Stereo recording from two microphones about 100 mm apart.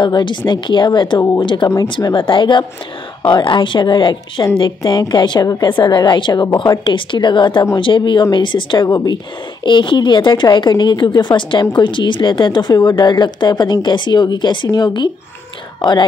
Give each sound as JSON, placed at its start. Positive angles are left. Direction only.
{"t": 0.0, "sound": "a woman's voice", "side_deg": 50}
{"t": 8.8, "sound": "a woman's voice", "side_deg": 40}
{"t": 9.7, "sound": "a woman's voice", "side_deg": 50}
{"t": 15.8, "sound": "a woman's voice", "side_deg": 50}